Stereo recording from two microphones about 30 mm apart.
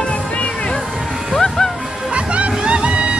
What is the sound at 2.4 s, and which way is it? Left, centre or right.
Music, right.